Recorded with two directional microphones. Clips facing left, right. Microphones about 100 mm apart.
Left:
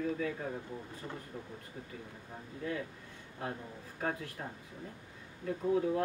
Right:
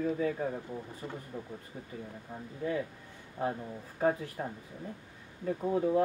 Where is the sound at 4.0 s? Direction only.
20° right (ahead or behind).